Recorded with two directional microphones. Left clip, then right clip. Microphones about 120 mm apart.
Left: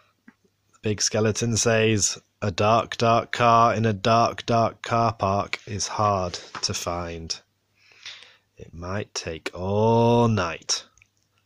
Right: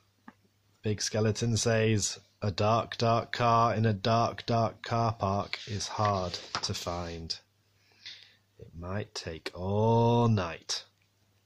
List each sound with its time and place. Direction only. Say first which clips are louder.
0.7 s speech: left 7 dB; 35° left (ahead or behind)